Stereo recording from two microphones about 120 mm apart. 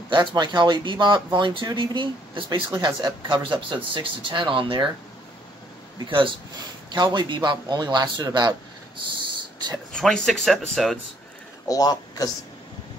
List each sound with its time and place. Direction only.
0.1 s speech: 40° right (ahead or behind)
6.0 s speech: 45° right (ahead or behind)
9.9 s speech: 5° left (ahead or behind)
11.6 s speech: 30° left (ahead or behind)